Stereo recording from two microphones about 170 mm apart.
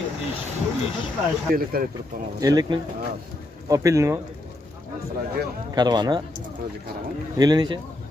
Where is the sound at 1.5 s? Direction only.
55° right (ahead or behind).